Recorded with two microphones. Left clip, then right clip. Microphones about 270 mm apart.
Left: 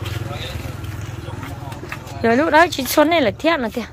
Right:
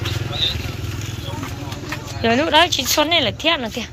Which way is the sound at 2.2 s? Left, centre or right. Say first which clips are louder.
Left 1 dB; centre.